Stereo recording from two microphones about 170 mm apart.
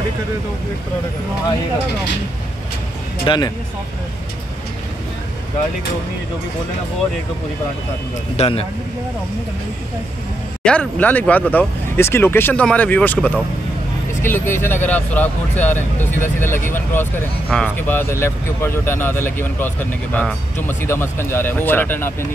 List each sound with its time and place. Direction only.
3.3 s speech: 25° left (ahead or behind)
8.4 s a man's voice: 35° left (ahead or behind)
10.6 s speech: 5° left (ahead or behind)